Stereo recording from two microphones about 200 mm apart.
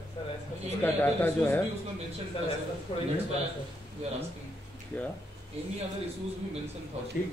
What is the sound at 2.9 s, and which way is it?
Speech, 25° left (ahead or behind).